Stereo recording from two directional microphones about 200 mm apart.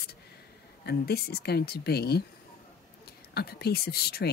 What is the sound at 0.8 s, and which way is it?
Speech, 50° left (ahead or behind).